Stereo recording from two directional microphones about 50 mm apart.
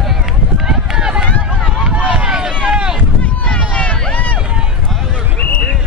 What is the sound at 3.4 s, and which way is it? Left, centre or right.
Vehicle, left.